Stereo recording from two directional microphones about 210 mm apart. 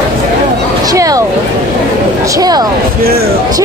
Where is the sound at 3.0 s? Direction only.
45° right (ahead or behind).